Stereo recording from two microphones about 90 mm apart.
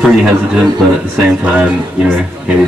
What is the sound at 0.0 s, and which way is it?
A man's voice, 10° right (ahead or behind).